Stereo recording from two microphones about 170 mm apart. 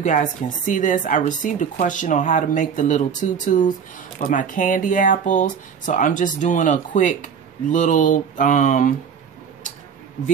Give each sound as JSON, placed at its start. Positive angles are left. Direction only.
{"t": 0.0, "sound": "speech", "side_deg": 50}